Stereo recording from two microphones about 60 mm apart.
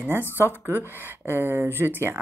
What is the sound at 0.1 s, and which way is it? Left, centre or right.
Speech, right.